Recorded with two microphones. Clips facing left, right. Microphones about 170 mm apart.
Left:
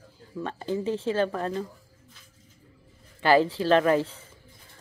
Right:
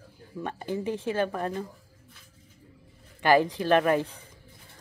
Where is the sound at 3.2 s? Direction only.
15° right (ahead or behind).